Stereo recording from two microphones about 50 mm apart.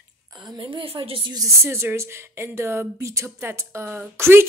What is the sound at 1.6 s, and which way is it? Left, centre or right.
A woman's voice, right.